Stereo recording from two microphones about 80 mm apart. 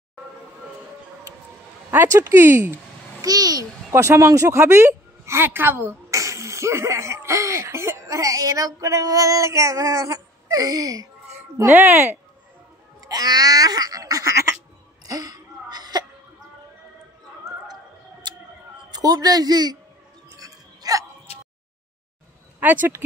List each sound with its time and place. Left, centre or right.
1.9 s speech: right
3.2 s a child's voice: right
3.9 s a woman's voice: right
11.7 s speech: right
13.0 s a sound: right
15.0 s sneeze: right
18.3 s a sound: right
18.9 s speech: right
20.3 s music: right
22.6 s speech: right